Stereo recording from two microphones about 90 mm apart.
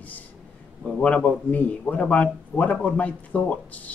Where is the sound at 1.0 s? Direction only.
15° left (ahead or behind).